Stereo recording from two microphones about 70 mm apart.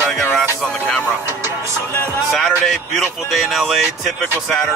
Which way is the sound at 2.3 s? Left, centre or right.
Centre.